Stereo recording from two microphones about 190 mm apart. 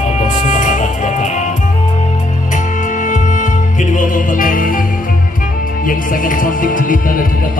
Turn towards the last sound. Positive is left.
turn(degrees=45)  # may be behind; listen again after turning